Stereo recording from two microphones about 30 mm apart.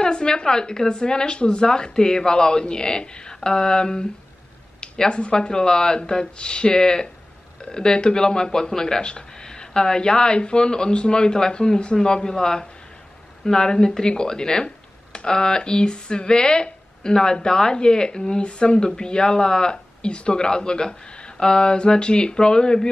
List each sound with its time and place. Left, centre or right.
0.0 s speech: left
6.8 s speech: left
9.0 s speech: left